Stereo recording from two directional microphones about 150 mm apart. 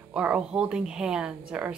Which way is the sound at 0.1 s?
10° right (ahead or behind).